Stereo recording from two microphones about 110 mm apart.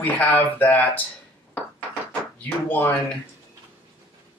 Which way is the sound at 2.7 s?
15° left (ahead or behind).